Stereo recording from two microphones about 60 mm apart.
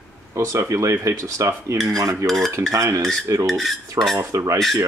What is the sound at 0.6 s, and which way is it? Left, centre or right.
Speech, right.